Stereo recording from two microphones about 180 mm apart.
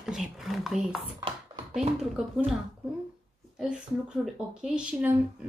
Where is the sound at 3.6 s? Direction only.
5° right (ahead or behind).